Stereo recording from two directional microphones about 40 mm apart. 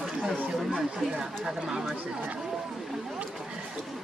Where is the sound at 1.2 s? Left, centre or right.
Centre.